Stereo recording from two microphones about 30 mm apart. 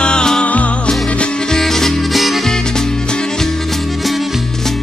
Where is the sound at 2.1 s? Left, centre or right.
Centre.